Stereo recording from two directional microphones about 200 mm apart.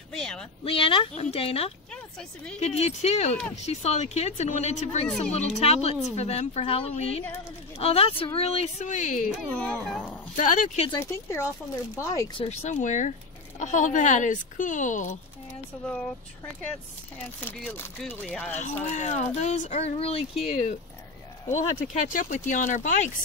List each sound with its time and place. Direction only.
0.1 s speech: 5° left (ahead or behind)
0.7 s speech: 25° left (ahead or behind)
9.5 s speech: 5° left (ahead or behind)
10.3 s speech: 40° left (ahead or behind)
10.9 s speech: 15° left (ahead or behind)
12.4 s speech: 35° left (ahead or behind)
17.5 s speech: 10° left (ahead or behind)
18.6 s speech: 35° left (ahead or behind)